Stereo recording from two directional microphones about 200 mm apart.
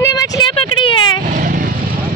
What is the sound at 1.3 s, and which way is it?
Vehicle, 45° right (ahead or behind).